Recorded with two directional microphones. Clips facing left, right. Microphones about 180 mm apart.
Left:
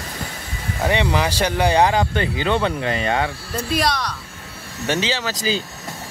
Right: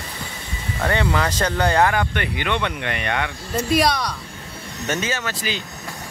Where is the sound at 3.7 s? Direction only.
10° right (ahead or behind).